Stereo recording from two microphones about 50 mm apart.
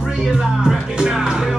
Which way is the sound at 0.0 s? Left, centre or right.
Centre.